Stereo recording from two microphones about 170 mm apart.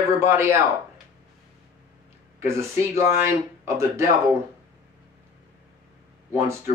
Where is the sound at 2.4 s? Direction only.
15° right (ahead or behind).